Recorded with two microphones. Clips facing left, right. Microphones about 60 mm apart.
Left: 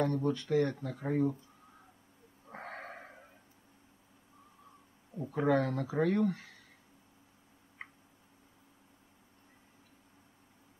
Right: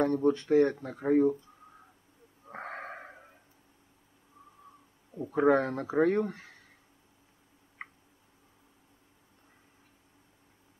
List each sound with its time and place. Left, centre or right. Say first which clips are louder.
0.0 s speech: right 5 dB; right
2.5 s a sound: right 4 dB; right
5.3 s speech: right 5 dB; right
7.8 s tick: right 3 dB; right